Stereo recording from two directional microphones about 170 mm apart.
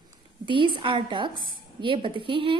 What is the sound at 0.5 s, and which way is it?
A woman's voice, 30° right (ahead or behind).